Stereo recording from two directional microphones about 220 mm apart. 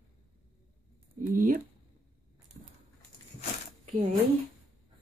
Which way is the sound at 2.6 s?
40° right (ahead or behind).